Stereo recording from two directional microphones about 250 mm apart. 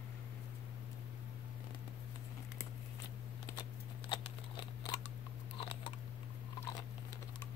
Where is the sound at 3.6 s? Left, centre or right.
Centre.